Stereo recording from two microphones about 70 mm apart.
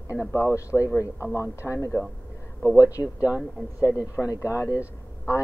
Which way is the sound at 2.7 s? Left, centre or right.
Left.